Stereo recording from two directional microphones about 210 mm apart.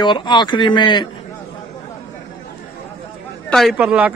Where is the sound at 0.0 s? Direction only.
20° left (ahead or behind).